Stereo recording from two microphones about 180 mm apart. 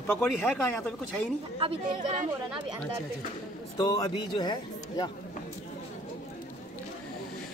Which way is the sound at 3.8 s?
25° left (ahead or behind).